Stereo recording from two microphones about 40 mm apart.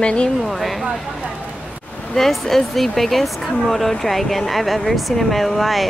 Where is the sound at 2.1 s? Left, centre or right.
Centre.